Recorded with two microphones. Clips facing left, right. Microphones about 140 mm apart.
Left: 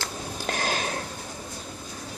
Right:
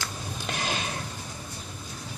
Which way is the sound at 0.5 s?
40° left (ahead or behind).